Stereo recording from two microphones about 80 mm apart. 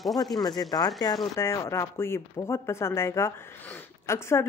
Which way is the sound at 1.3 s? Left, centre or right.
Left.